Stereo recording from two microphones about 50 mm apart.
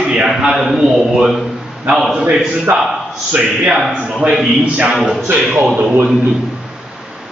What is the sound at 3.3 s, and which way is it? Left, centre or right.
Speech, right.